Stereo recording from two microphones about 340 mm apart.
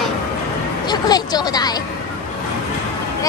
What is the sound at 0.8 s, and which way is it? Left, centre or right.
Speech, centre.